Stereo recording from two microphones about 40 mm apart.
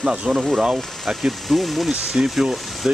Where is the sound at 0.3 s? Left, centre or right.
Centre.